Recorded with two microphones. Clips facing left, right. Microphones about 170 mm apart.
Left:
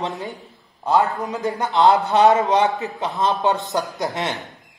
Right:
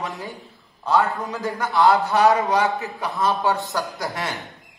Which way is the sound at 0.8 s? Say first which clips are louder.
Left 2 dB; 20° left (ahead or behind).